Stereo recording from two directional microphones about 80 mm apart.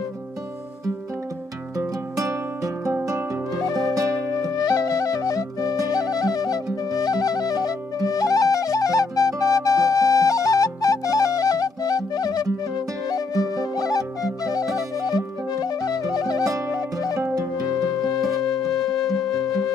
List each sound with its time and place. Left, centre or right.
1.8 s music: right
3.9 s music: right
4.4 s music: left
18.7 s music: centre
19.3 s music: left